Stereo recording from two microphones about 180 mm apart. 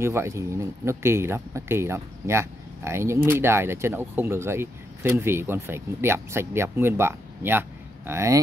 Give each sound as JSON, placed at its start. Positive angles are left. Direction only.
{"t": 0.0, "sound": "speech", "side_deg": -15}